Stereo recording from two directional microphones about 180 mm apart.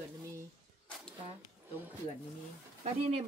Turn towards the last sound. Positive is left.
turn(degrees=-35)  # may be behind; listen again after turning